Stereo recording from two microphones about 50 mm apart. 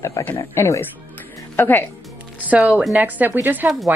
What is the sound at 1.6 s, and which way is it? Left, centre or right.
Speech, left.